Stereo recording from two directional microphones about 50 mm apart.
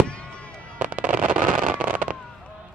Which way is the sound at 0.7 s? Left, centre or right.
Right.